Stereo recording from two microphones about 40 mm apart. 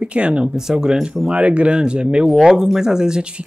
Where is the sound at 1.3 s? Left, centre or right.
Right.